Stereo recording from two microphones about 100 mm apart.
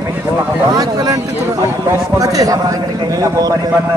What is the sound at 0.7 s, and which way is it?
Speech, 40° right (ahead or behind).